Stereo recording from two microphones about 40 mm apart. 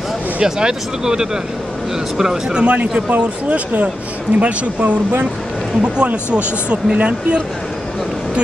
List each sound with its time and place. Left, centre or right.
0.4 s speech: centre
2.6 s speech: right
5.8 s speech: right